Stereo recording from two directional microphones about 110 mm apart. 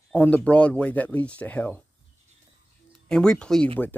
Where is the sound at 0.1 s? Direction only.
15° left (ahead or behind).